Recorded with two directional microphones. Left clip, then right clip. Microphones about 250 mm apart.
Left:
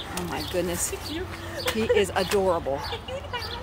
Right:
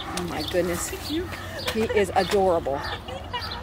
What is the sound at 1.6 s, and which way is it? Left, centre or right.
Speech, centre.